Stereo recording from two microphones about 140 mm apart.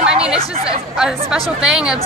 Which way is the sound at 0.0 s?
5° right (ahead or behind).